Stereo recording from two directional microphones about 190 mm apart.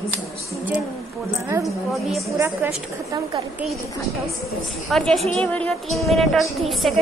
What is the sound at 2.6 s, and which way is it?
Speech, 20° right (ahead or behind).